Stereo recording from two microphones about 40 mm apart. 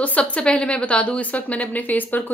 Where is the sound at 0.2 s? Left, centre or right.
Left.